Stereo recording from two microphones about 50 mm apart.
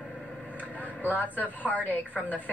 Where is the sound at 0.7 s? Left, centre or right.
Left.